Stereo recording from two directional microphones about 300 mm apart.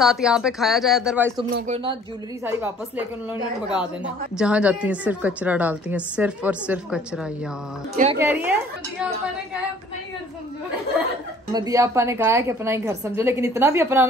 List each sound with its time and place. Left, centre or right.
0.0 s a woman's voice: centre
2.4 s a woman's voice: centre
4.4 s a woman's voice: centre
7.9 s a woman's voice: right
8.2 s a woman's voice: centre
11.5 s a woman's voice: centre